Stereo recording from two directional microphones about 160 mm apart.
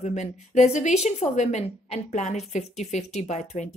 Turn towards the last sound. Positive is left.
turn(degrees=50)  # may be behind; listen again after turning